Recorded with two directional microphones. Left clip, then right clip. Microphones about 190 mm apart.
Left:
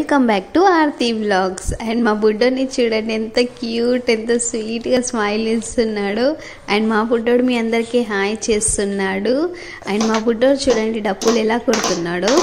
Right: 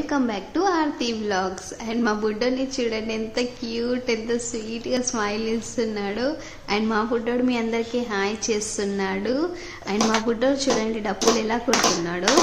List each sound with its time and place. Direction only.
0.1 s a woman's voice: 35° left (ahead or behind)
9.9 s speech: centre (ahead or behind)
10.2 s a woman's voice: 25° left (ahead or behind)
11.7 s speech: centre (ahead or behind)